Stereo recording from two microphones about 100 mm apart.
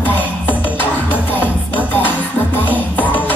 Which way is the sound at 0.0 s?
15° left (ahead or behind).